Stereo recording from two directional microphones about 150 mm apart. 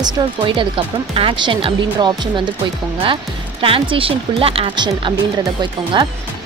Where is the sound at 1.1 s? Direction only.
35° right (ahead or behind).